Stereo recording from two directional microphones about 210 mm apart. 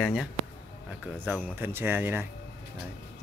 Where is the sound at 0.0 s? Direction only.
Centre (ahead or behind).